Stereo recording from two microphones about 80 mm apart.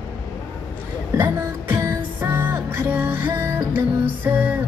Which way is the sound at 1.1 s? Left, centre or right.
Right.